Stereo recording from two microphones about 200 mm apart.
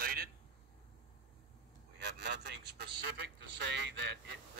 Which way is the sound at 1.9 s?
55° right (ahead or behind).